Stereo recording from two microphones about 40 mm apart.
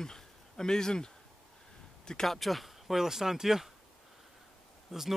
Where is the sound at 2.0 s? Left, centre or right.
Centre.